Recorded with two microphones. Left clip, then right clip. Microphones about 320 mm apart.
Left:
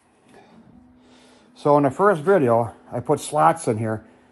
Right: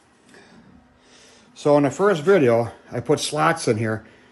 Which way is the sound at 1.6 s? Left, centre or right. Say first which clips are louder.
Even; centre.